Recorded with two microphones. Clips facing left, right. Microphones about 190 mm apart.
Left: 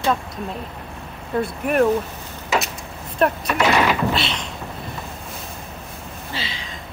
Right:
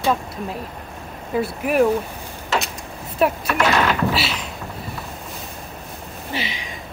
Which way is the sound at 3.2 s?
Centre (ahead or behind).